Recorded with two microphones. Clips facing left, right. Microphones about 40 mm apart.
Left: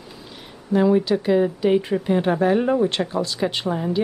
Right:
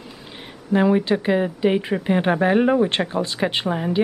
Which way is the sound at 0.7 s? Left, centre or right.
Right.